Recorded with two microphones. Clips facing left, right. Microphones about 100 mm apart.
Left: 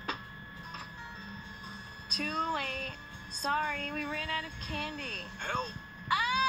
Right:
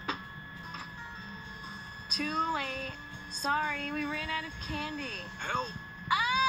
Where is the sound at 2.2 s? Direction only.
5° right (ahead or behind).